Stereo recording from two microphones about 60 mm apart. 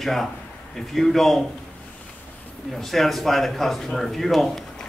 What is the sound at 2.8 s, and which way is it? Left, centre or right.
A man's voice, centre.